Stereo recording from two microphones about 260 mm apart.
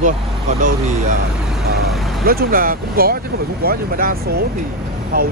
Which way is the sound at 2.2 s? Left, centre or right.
Right.